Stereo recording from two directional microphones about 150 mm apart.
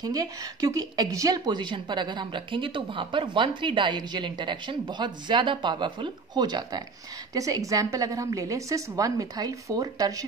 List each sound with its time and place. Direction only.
0.0 s a woman's voice: 25° right (ahead or behind)